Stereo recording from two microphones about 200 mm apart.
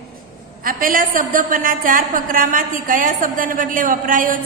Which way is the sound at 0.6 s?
45° right (ahead or behind).